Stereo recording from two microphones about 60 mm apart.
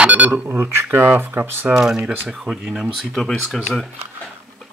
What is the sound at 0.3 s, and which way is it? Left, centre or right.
Speech, right.